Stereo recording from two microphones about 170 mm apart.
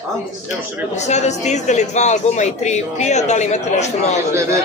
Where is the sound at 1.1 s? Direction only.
40° left (ahead or behind).